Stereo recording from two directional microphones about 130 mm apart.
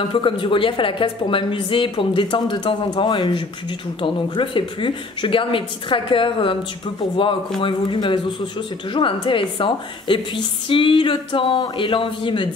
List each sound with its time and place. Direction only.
0.1 s a man's voice: 40° left (ahead or behind)
7.6 s a man's voice: 40° left (ahead or behind)